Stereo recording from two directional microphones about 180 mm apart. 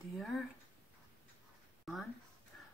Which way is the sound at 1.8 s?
Centre (ahead or behind).